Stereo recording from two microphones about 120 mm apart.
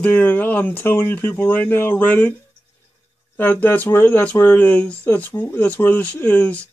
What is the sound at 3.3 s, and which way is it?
Speech, 15° left (ahead or behind).